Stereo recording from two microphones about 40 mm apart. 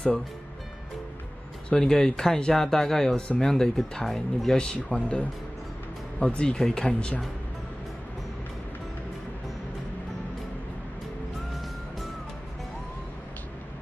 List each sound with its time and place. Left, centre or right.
1.7 s speech: centre
4.9 s speech: left